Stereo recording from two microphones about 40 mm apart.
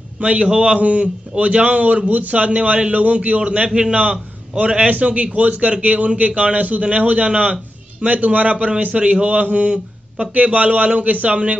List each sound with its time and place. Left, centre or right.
0.2 s a man's voice: right
1.7 s a man's voice: right